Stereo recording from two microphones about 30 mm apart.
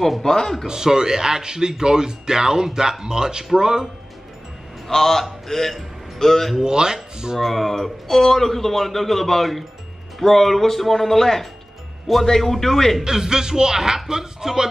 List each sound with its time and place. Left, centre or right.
0.2 s speech: centre
0.7 s speech: right
4.8 s a man's voice: centre
6.6 s speech: right
7.3 s speech: centre
13.0 s speech: right